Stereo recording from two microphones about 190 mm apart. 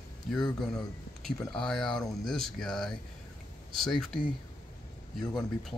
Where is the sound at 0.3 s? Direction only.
Centre (ahead or behind).